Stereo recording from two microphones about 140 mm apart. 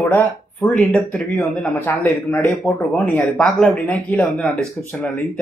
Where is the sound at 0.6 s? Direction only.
Centre (ahead or behind).